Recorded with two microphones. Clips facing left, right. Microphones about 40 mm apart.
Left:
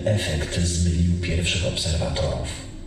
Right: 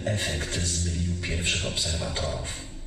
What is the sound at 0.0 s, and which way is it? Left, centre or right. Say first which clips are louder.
A man's voice: left 5 dB; centre.